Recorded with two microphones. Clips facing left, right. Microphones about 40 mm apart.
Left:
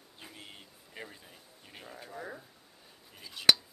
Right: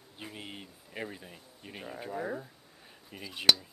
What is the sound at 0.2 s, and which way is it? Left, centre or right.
Speech, right.